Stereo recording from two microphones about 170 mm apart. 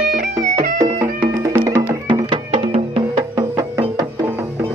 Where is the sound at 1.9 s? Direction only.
30° right (ahead or behind).